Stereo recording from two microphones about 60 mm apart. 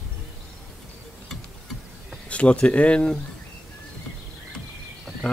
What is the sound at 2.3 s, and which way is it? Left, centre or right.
Speech, centre.